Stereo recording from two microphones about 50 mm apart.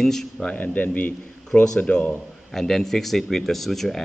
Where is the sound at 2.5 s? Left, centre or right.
Centre.